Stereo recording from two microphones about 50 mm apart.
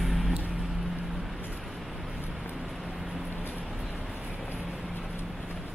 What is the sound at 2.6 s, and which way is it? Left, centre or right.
Vehicle, centre.